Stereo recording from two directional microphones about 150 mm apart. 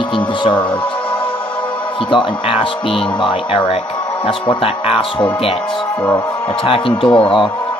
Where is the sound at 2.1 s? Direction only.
35° left (ahead or behind).